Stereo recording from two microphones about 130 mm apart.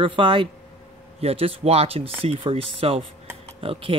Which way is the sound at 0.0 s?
40° right (ahead or behind).